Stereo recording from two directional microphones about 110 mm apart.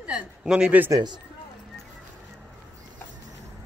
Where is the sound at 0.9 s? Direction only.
40° right (ahead or behind).